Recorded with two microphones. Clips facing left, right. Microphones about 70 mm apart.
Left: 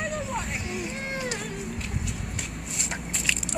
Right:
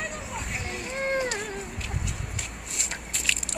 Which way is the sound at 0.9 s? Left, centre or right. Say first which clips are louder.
Right 5 dB; right.